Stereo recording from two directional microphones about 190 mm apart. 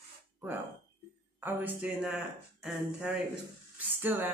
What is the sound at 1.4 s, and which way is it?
Speech, 5° right (ahead or behind).